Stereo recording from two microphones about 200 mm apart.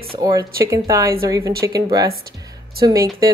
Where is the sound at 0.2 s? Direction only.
20° right (ahead or behind).